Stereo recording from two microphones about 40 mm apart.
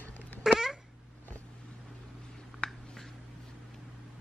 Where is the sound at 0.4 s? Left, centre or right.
Centre.